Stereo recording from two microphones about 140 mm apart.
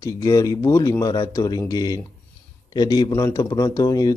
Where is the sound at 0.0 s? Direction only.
25° left (ahead or behind).